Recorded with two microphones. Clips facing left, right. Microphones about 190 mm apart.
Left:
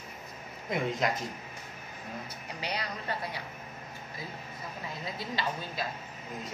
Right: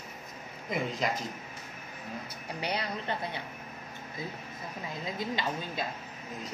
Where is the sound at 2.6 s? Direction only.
25° right (ahead or behind).